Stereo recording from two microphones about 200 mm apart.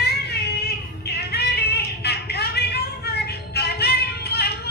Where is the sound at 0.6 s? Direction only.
55° left (ahead or behind).